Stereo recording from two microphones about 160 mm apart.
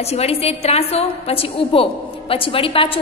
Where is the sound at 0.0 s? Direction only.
40° left (ahead or behind).